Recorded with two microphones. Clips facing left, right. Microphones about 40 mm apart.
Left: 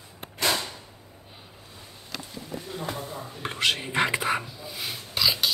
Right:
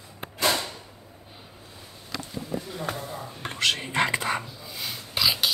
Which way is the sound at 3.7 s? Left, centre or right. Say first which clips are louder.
Even; centre.